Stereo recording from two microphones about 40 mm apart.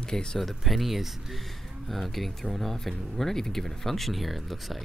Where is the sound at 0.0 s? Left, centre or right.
Centre.